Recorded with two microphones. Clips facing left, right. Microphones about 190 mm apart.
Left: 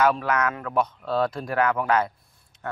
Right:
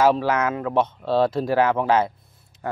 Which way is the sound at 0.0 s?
25° right (ahead or behind).